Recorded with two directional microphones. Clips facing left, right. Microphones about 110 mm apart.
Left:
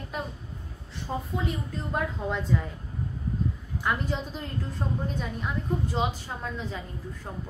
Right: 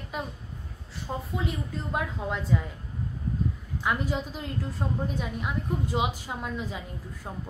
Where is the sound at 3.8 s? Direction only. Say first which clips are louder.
Right 1 dB; 5° right (ahead or behind).